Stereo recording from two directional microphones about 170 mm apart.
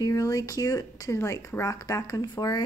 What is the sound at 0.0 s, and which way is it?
A woman's voice, 20° left (ahead or behind).